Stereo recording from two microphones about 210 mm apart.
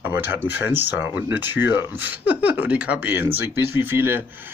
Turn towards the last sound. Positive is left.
turn(degrees=-10)  # may be behind; listen again after turning